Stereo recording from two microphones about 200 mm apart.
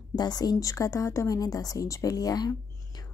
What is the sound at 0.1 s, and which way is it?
Speech, 20° left (ahead or behind).